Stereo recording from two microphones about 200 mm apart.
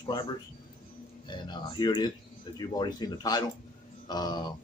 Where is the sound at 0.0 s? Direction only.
20° left (ahead or behind).